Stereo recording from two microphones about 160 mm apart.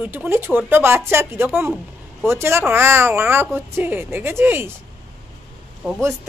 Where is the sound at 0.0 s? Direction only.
10° right (ahead or behind).